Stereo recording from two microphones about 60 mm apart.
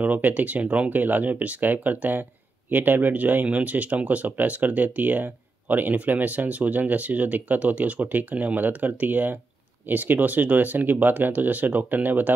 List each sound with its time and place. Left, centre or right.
0.0 s speech: right